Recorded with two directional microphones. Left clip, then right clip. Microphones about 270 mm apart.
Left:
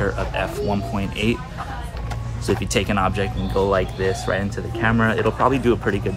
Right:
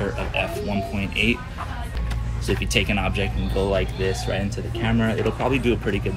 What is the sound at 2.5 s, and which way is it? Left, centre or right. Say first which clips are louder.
Speech: left 1 dB; centre.